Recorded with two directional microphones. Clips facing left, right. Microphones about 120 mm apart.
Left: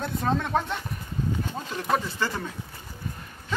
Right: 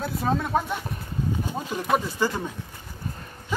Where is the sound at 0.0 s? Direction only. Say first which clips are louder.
Right 1 dB; 5° right (ahead or behind).